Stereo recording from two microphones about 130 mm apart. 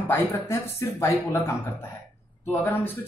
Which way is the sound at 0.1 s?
20° left (ahead or behind).